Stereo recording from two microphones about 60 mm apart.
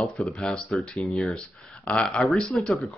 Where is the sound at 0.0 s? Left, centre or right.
Centre.